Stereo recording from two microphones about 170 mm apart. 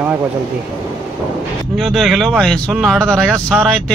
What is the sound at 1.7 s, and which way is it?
Speech, centre (ahead or behind).